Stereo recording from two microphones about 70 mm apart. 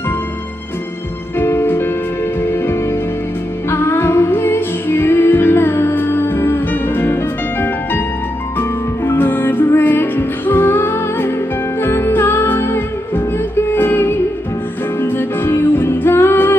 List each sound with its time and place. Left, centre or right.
1.4 s music: left